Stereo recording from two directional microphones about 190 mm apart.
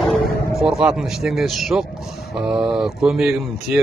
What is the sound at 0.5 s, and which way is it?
Speech, centre (ahead or behind).